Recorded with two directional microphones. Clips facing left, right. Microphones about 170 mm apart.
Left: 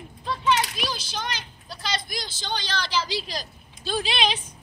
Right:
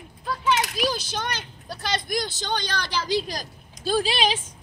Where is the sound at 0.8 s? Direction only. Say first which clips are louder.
Right 5 dB; 45° right (ahead or behind).